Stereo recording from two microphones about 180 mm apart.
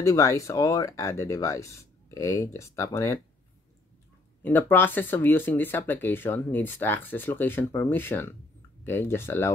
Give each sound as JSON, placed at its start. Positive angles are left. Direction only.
{"t": 0.0, "sound": "speech", "side_deg": 20}
{"t": 4.4, "sound": "speech", "side_deg": 10}